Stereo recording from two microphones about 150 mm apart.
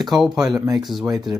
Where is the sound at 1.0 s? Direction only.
25° right (ahead or behind).